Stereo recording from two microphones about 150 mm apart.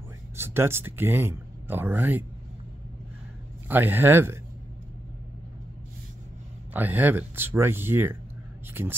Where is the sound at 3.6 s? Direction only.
15° right (ahead or behind).